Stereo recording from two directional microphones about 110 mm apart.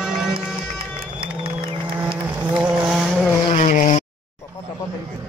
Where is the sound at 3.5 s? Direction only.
90° left.